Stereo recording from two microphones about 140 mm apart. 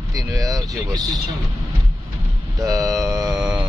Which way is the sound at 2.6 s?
25° right (ahead or behind).